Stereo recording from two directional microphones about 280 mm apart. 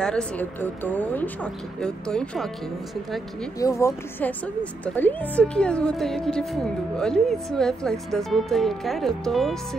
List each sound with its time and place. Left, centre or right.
0.0 s speech: centre
3.5 s a woman's voice: centre